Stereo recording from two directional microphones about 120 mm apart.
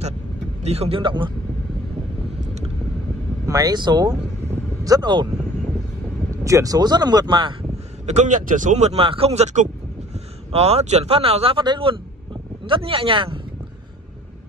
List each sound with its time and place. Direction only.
0.7 s speech: 55° right (ahead or behind)
3.4 s speech: 30° right (ahead or behind)
6.4 s speech: 25° right (ahead or behind)
8.1 s speech: 85° right; by 9.0 s 70° right (ahead or behind)
9.0 s speech: 50° right (ahead or behind); by 9.7 s 70° right (ahead or behind)
10.1 s speech: 60° right (ahead or behind)
11.6 s speech: 40° right (ahead or behind)